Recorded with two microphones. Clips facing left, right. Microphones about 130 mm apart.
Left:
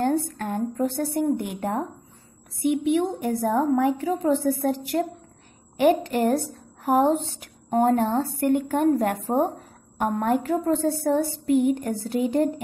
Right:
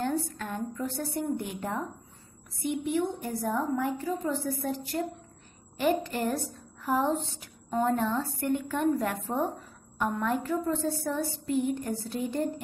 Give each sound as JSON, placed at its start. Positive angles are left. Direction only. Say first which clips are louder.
{"t": 0.4, "sound": "a woman's voice", "louder": "left 8 dB", "side_deg": 55}
{"t": 2.6, "sound": "a woman's voice", "louder": "left 7 dB", "side_deg": 70}